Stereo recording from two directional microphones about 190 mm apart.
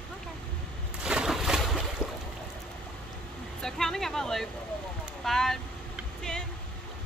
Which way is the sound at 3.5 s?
5° left (ahead or behind).